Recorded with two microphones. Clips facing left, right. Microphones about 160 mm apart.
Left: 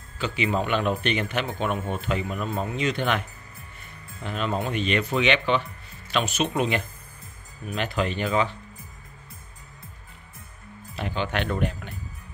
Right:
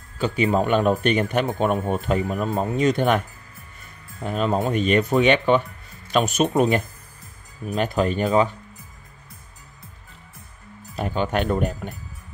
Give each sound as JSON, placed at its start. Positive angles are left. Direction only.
{"t": 0.2, "sound": "speech", "side_deg": -45}
{"t": 11.0, "sound": "speech", "side_deg": -45}